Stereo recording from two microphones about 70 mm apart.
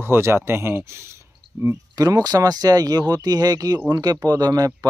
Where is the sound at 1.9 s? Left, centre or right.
Right.